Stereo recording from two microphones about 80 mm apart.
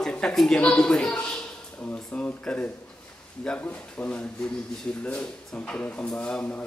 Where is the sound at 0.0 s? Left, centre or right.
Centre.